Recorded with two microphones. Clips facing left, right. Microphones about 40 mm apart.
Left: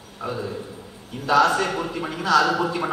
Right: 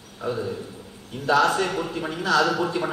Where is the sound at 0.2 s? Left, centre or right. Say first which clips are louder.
Right 1 dB; left.